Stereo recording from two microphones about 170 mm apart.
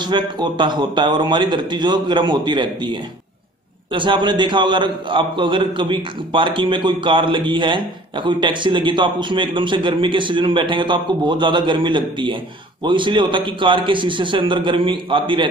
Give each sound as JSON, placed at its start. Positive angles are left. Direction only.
{"t": 0.0, "sound": "a man's voice", "side_deg": -25}